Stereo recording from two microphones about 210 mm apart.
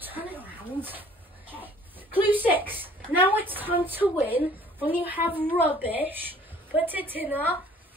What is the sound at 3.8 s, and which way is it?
A woman's voice, 10° right (ahead or behind).